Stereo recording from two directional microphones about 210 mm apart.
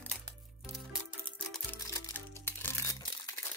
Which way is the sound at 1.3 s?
5° left (ahead or behind).